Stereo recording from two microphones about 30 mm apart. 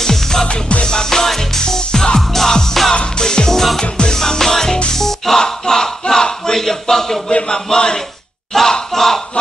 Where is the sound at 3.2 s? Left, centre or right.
Left.